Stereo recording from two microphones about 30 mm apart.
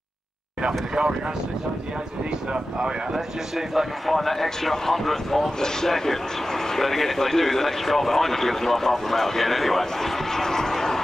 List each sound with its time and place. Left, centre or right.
0.6 s speech: right
4.1 s speech: centre